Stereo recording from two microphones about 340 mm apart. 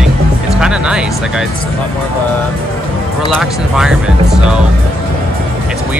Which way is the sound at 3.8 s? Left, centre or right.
Centre.